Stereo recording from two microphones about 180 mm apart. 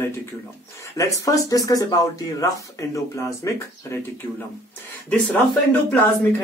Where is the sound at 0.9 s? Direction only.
15° left (ahead or behind).